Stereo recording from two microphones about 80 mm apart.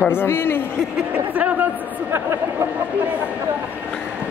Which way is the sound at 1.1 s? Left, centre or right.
Centre.